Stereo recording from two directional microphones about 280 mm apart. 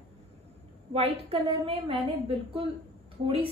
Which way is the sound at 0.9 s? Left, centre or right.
Right.